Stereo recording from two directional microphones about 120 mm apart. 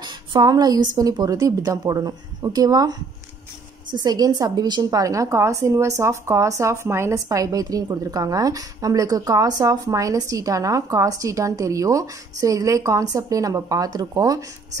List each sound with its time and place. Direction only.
0.0 s a woman's voice: 35° right (ahead or behind)